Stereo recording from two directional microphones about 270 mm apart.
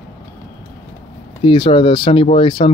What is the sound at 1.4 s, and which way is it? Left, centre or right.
Speech, centre.